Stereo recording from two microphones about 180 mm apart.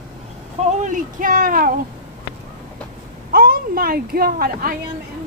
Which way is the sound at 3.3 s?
55° right (ahead or behind).